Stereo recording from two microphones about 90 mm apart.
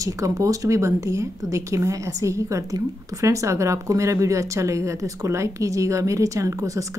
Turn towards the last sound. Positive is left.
turn(degrees=-40)  # may be behind; listen again after turning